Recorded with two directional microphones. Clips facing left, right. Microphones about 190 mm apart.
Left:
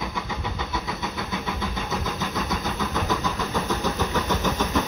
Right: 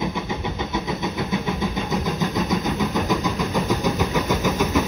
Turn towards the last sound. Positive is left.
turn(degrees=-10)  # may be behind; listen again after turning